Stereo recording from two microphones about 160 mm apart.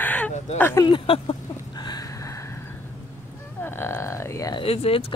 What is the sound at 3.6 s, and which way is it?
Speech, 15° left (ahead or behind).